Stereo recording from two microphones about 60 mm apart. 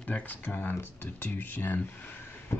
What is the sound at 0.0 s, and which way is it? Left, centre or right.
Speech, left.